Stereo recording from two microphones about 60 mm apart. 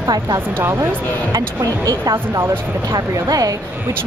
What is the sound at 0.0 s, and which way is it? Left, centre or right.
Speech, right.